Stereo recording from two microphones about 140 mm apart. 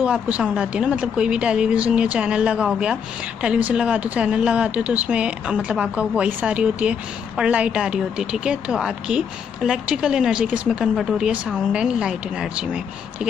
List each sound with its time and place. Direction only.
0.0 s speech: 10° right (ahead or behind)